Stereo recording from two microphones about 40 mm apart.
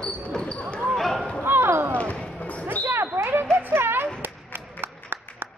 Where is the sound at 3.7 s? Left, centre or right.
Right.